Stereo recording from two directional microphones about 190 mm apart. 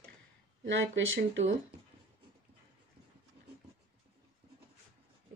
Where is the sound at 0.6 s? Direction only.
75° right (ahead or behind).